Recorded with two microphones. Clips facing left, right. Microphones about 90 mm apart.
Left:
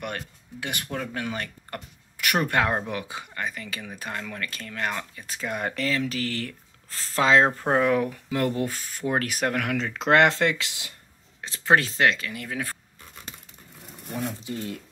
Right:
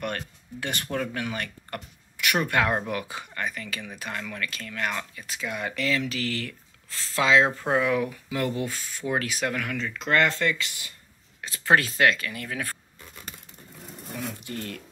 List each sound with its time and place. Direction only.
0.0 s speech: 15° left (ahead or behind)
0.8 s speech: 5° left (ahead or behind)
1.1 s speech: 25° left (ahead or behind)
2.1 s speech: 35° left (ahead or behind); by 9.8 s 65° left (ahead or behind)
9.9 s speech: 80° left
11.4 s speech: 25° left (ahead or behind)
14.4 s speech: 15° left (ahead or behind)